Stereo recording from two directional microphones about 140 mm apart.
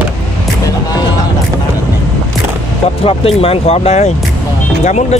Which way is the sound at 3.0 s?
45° left (ahead or behind).